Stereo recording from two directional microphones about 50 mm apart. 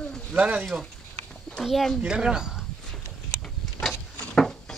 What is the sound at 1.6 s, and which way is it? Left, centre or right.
Speech, centre.